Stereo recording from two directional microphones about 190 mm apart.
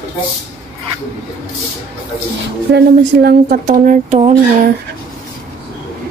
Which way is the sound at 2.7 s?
55° right (ahead or behind).